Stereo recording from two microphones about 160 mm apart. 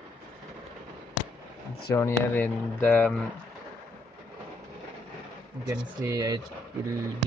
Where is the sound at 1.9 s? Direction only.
15° left (ahead or behind).